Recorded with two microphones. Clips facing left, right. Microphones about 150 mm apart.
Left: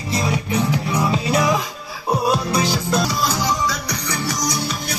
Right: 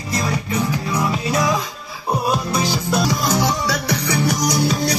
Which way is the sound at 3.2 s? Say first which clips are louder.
Right 2 dB; 60° right (ahead or behind).